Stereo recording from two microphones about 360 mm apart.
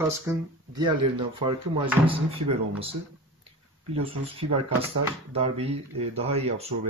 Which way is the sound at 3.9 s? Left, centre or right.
Centre.